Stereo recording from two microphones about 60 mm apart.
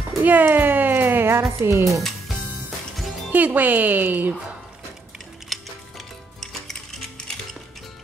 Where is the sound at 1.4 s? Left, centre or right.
Right.